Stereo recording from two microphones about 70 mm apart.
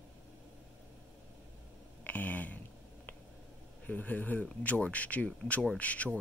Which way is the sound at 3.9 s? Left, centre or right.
Left.